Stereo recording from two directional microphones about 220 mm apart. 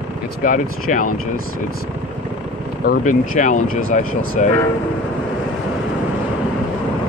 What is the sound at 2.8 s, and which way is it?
Speech, 40° left (ahead or behind).